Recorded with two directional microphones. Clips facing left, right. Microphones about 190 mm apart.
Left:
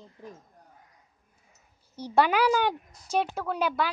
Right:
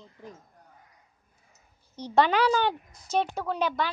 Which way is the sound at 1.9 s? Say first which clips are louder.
Even; 10° left (ahead or behind).